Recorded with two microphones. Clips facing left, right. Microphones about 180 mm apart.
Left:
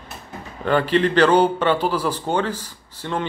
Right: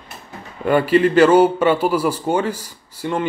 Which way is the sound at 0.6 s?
10° right (ahead or behind).